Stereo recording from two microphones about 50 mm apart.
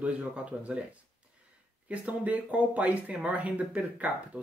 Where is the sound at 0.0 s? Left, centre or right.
Right.